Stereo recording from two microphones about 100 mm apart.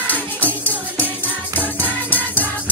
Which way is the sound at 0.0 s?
15° left (ahead or behind).